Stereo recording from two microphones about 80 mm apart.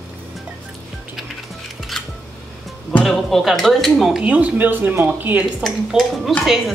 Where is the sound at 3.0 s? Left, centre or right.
Centre.